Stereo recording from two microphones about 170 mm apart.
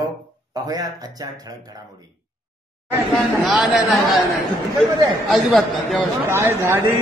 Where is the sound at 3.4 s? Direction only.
Centre (ahead or behind).